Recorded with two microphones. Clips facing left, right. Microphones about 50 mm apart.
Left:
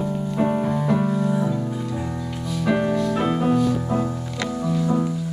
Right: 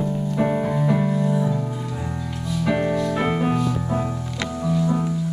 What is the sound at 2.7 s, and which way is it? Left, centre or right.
Music, right.